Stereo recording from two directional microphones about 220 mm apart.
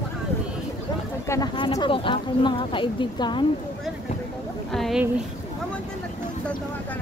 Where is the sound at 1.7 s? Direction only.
25° left (ahead or behind).